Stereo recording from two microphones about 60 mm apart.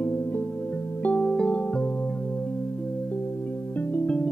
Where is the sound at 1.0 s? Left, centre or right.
Centre.